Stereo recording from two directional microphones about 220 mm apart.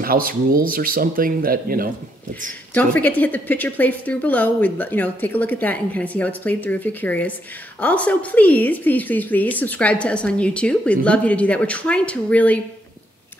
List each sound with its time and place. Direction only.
0.0 s speech: 40° right (ahead or behind)
2.7 s a woman's voice: 5° left (ahead or behind)